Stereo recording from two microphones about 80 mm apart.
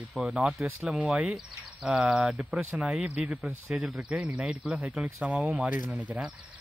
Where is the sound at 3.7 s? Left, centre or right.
Centre.